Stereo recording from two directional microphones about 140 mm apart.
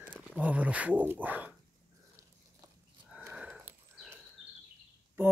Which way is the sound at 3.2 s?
15° right (ahead or behind).